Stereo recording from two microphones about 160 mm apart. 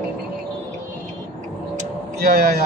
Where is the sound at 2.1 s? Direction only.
75° right (ahead or behind).